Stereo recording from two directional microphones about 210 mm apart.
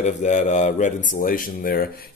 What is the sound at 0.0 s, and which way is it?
Speech, 35° left (ahead or behind).